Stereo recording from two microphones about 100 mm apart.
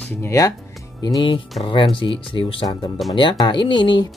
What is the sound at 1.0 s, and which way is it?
Speech, 50° left (ahead or behind).